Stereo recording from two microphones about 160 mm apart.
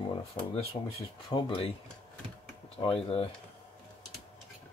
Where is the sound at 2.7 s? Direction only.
40° left (ahead or behind).